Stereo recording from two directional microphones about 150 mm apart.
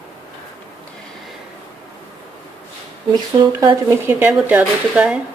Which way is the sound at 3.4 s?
30° right (ahead or behind).